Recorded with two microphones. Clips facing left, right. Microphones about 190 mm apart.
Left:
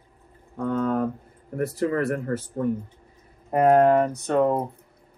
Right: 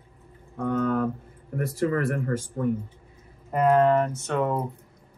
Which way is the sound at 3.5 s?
50° left (ahead or behind).